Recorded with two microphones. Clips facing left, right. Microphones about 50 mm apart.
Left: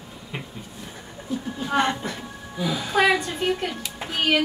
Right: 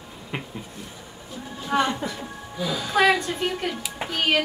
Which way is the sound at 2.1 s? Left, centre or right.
Left.